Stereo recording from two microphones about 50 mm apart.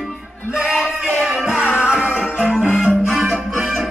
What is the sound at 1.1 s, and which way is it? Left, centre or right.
Music, centre.